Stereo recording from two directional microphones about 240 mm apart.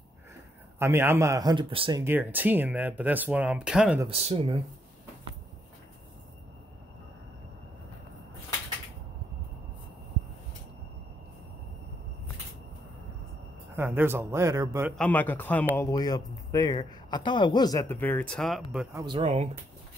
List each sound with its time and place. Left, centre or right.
0.7 s speech: centre
4.1 s speech: right
13.7 s speech: centre
15.0 s speech: centre
18.9 s speech: centre